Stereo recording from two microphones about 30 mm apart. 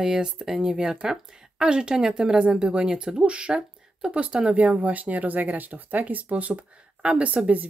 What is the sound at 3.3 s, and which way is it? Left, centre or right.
Speech, right.